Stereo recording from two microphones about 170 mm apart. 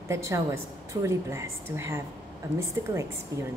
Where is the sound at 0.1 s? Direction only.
15° right (ahead or behind).